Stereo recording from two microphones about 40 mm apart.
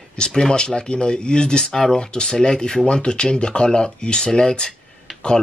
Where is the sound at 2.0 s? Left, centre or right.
Left.